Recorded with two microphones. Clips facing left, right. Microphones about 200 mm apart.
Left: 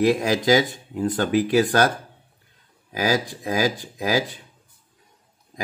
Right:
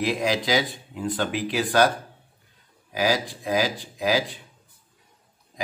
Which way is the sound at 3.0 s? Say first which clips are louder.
Left 1 dB; 45° left (ahead or behind).